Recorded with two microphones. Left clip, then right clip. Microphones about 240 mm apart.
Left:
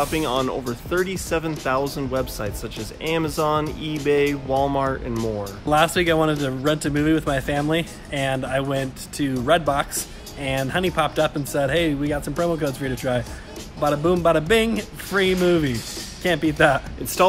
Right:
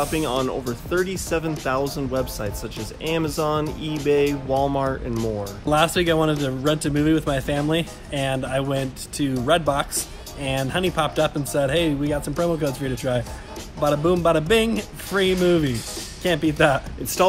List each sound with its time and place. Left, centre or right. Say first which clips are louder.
0.0 s speech: left 1 dB; centre